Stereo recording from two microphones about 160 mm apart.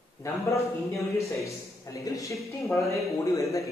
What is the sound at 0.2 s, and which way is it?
A man's voice, 20° left (ahead or behind).